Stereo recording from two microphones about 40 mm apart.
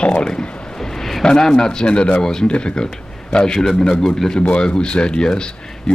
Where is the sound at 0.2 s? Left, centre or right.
Centre.